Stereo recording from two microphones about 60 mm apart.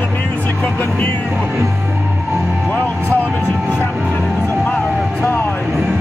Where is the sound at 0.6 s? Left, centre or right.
Left.